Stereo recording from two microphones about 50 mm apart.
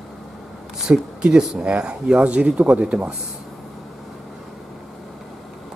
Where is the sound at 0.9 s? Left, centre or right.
Right.